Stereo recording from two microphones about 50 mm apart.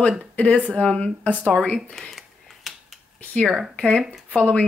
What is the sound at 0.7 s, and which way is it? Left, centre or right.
Speech, centre.